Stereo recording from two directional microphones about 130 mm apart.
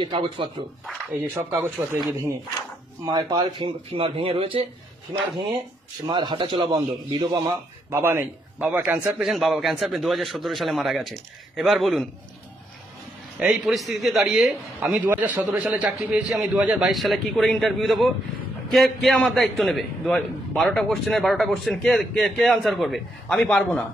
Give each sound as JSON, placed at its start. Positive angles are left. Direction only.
{"t": 0.0, "sound": "a man's voice", "side_deg": -40}
{"t": 1.8, "sound": "speech", "side_deg": -20}
{"t": 3.1, "sound": "speech", "side_deg": -30}
{"t": 6.0, "sound": "a man's voice", "side_deg": -35}
{"t": 7.9, "sound": "a man's voice", "side_deg": -20}
{"t": 13.4, "sound": "a man's voice", "side_deg": -5}
{"t": 14.9, "sound": "a man's voice", "side_deg": -10}